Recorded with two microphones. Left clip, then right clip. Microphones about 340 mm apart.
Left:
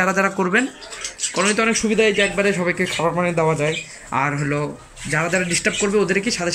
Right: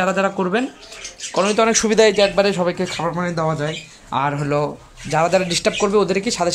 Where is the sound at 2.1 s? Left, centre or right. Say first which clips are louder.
Right 3 dB; centre.